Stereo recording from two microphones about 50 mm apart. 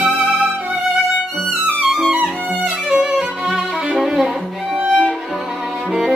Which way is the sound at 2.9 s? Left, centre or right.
Centre.